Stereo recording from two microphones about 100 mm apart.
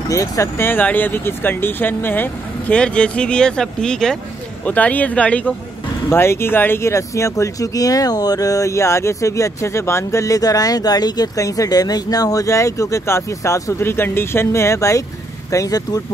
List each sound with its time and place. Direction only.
0.1 s speech: 30° left (ahead or behind); by 5.5 s 10° left (ahead or behind)
6.0 s speech: 25° left (ahead or behind)